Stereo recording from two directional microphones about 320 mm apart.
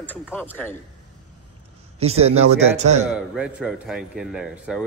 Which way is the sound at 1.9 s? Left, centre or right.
Centre.